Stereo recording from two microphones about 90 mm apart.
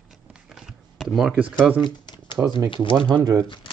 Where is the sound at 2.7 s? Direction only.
65° left (ahead or behind).